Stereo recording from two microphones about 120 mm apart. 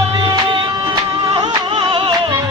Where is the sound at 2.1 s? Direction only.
30° right (ahead or behind).